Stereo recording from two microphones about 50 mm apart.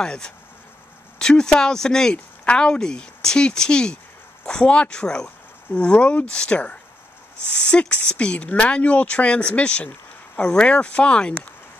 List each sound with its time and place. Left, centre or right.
0.0 s speech: centre